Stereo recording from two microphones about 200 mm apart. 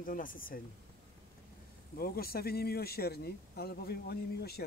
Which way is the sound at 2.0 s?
50° left (ahead or behind).